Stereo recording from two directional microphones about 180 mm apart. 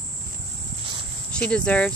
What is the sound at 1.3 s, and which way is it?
Speech, 5° left (ahead or behind).